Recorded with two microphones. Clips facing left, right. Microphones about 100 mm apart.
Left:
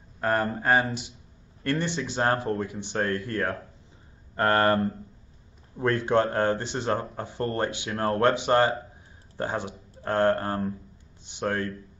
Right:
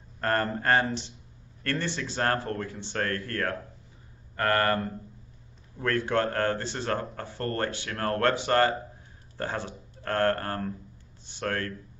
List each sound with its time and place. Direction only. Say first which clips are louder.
0.2 s speech: left 2 dB; 10° left (ahead or behind)